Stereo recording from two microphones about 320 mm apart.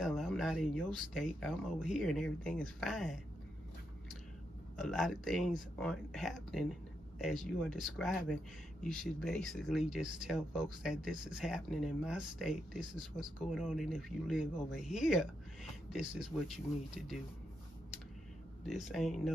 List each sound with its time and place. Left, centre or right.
0.0 s speech: centre
4.7 s speech: centre
18.6 s speech: centre